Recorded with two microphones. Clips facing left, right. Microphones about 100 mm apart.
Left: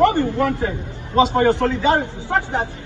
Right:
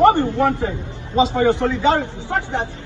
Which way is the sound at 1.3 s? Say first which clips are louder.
Left 1 dB; 60° left (ahead or behind).